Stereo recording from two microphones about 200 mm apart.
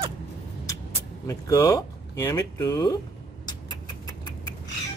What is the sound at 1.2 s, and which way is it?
Speech, 15° left (ahead or behind).